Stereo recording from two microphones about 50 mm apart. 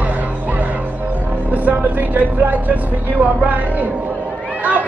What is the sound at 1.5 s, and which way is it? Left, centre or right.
Vehicle, right.